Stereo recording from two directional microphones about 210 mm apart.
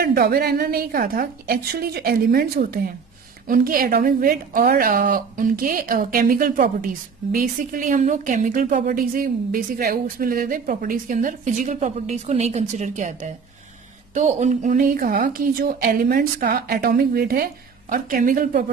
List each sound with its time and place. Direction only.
0.0 s a woman's voice: 45° right (ahead or behind)